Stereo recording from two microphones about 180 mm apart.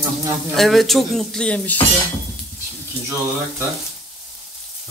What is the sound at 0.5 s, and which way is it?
Speech, centre (ahead or behind).